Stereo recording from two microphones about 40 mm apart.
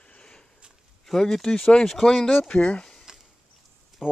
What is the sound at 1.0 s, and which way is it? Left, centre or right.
Speech, centre.